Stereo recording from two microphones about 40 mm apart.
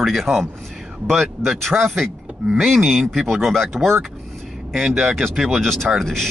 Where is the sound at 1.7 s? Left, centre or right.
Right.